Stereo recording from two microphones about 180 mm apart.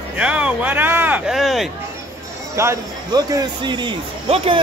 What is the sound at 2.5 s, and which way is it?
Speech, 20° right (ahead or behind).